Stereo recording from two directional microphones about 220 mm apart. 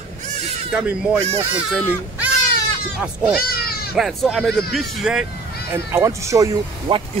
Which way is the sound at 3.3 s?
45° left (ahead or behind).